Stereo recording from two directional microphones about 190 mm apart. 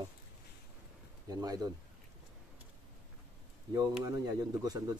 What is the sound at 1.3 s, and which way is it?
Speech, 20° right (ahead or behind).